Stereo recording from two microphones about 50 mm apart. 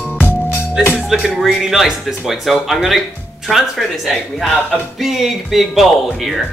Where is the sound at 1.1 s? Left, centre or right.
Centre.